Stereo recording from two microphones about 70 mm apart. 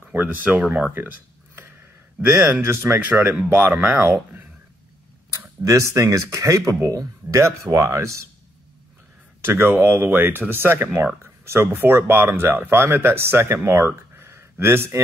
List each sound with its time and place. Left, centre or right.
0.1 s speech: right
0.9 s a sound: right
2.2 s speech: right
3.3 s speech: right
5.6 s speech: right
9.4 s speech: right